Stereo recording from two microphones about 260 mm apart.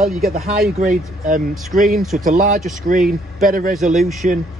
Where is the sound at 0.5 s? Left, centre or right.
Right.